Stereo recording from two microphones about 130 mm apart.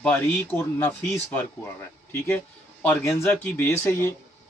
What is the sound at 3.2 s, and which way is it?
Speech, 15° left (ahead or behind).